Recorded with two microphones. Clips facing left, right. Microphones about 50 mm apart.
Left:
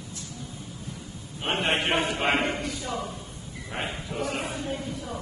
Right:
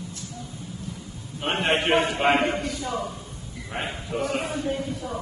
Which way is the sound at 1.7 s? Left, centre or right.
Right.